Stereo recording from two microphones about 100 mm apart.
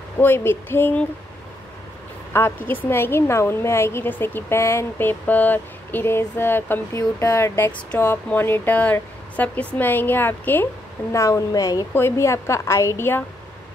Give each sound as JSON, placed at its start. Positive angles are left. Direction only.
{"t": 0.2, "sound": "a woman's voice", "side_deg": 20}
{"t": 2.3, "sound": "a woman's voice", "side_deg": 20}
{"t": 11.9, "sound": "a woman's voice", "side_deg": 25}